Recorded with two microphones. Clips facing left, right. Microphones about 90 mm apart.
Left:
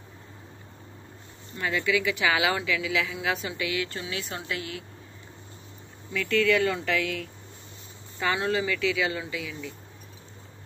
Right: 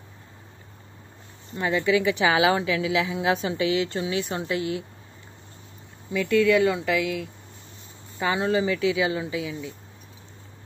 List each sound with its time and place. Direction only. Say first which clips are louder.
1.6 s a woman's voice: right 4 dB; 25° right (ahead or behind)
6.1 s a woman's voice: right 4 dB; 15° right (ahead or behind)